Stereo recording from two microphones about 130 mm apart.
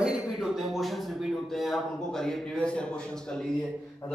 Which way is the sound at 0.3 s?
5° right (ahead or behind).